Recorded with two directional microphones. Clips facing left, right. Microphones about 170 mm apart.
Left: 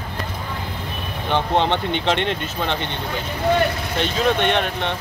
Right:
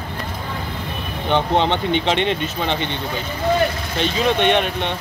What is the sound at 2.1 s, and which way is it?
Speech, 15° right (ahead or behind).